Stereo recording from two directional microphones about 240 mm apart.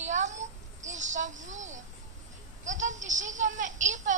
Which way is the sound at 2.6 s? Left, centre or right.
Right.